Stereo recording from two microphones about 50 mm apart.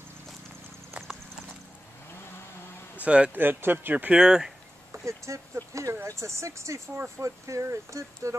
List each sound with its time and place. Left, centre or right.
0.9 s clip-clop: right
3.0 s speech: right
3.3 s speech: right
4.1 s speech: centre
5.0 s speech: right
6.0 s speech: right